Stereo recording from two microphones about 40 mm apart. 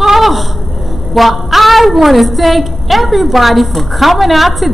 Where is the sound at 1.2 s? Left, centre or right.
Centre.